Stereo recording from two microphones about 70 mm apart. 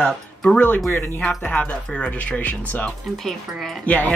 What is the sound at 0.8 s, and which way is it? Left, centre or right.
Speech, left.